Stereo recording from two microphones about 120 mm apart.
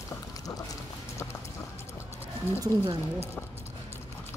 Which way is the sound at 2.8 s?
50° right (ahead or behind).